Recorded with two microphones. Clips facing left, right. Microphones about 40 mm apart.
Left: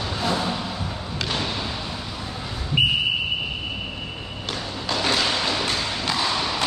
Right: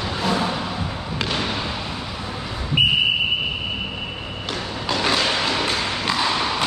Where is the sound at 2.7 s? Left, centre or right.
Centre.